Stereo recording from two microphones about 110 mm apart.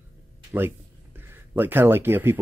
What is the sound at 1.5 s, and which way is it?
Speech, 20° right (ahead or behind).